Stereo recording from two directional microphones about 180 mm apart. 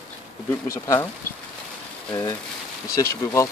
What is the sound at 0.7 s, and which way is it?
Speech, 15° left (ahead or behind).